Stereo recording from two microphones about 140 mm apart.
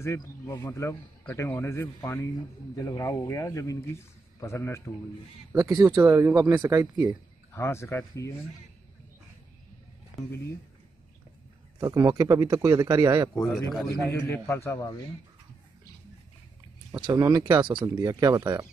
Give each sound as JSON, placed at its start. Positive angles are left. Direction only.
{"t": 0.7, "sound": "a man's voice", "side_deg": 20}
{"t": 5.5, "sound": "speech", "side_deg": -25}
{"t": 7.5, "sound": "a man's voice", "side_deg": 20}
{"t": 11.8, "sound": "speech", "side_deg": -25}
{"t": 13.3, "sound": "speech", "side_deg": 5}
{"t": 13.8, "sound": "a man's voice", "side_deg": 15}
{"t": 16.9, "sound": "speech", "side_deg": -25}